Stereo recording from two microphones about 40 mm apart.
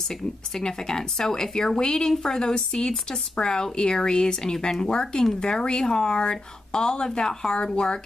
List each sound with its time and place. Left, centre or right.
0.1 s a woman's voice: centre